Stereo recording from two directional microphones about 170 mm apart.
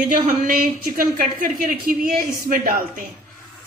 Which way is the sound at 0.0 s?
55° right (ahead or behind).